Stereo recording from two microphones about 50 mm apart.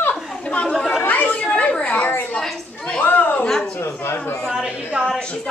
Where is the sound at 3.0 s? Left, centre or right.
Left.